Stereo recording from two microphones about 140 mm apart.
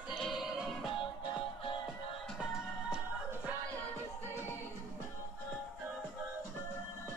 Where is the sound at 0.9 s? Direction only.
35° left (ahead or behind).